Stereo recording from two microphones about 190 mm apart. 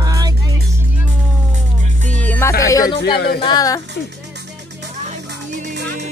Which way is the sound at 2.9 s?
60° left (ahead or behind).